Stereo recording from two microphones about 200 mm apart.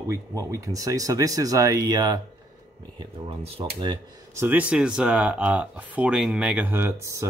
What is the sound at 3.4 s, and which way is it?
Speech, 25° right (ahead or behind).